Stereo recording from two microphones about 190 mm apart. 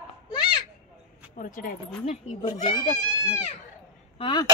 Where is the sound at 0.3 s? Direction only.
25° left (ahead or behind).